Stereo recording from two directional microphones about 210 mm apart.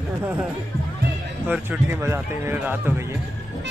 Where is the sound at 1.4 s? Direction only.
10° right (ahead or behind).